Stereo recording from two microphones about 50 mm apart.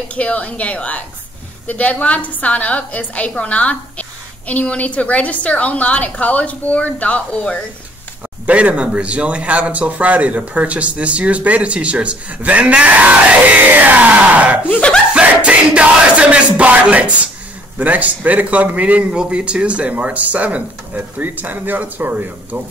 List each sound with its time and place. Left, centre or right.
0.1 s a woman's voice: left
8.5 s a man's voice: right